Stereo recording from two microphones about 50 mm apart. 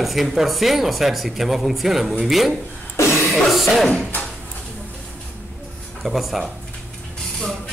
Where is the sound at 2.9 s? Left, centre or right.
Left.